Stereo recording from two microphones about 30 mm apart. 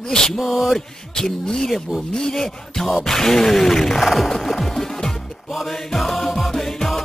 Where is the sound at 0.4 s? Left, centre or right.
Centre.